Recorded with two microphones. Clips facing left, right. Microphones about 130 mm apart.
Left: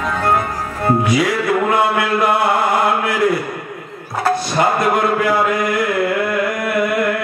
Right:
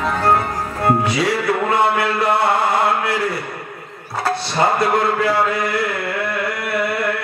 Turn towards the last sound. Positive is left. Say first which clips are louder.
# left 3 dB
turn(degrees=-30)  # may be behind; listen again after turning